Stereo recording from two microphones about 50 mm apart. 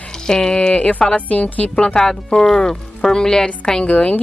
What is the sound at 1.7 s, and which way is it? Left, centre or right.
Speech, centre.